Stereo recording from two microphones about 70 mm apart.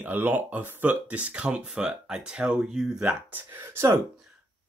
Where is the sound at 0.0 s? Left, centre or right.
Right; by 3.2 s centre.